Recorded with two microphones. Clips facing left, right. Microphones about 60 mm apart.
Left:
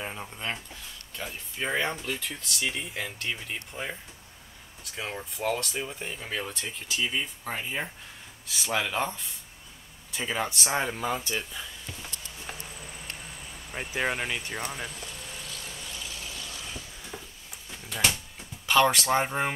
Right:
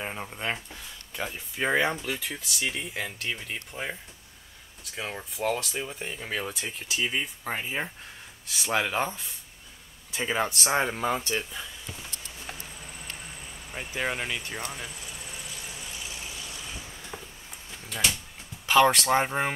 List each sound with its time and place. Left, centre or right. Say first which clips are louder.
0.0 s speech: right 2 dB; centre
1.8 s speech: right 3 dB; centre
11.3 s a sound: right 2 dB; centre
13.7 s speech: left 1 dB; centre
14.9 s cricket: even; centre
16.4 s mechanisms: even; centre
17.1 s a sound: right 1 dB; centre
18.7 s speech: right 2 dB; centre